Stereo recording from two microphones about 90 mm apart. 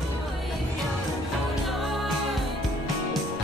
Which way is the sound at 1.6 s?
Centre (ahead or behind).